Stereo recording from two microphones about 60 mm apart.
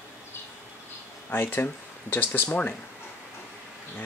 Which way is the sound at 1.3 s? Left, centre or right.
Left.